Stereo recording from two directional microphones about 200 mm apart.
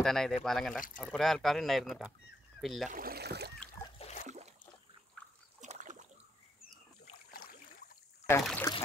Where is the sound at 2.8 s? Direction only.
45° right (ahead or behind).